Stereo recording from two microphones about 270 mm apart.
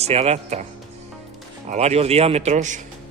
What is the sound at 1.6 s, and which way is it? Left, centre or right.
Speech, right.